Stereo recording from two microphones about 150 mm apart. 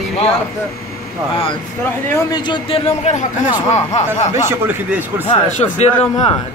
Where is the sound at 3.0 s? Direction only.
50° left (ahead or behind).